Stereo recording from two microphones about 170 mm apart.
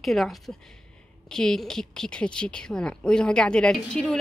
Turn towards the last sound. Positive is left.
turn(degrees=5)  # may be behind; listen again after turning